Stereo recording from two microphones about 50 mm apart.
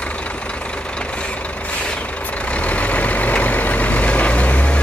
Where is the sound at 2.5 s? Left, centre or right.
Left.